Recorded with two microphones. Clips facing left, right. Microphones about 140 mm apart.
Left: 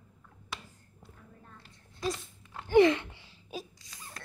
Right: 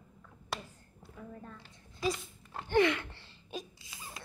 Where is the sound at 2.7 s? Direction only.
30° left (ahead or behind).